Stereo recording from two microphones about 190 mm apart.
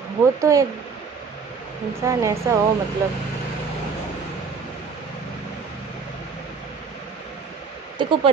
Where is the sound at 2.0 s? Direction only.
15° right (ahead or behind).